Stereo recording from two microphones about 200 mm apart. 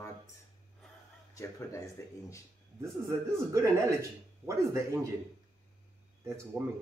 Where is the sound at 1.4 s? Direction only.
15° left (ahead or behind).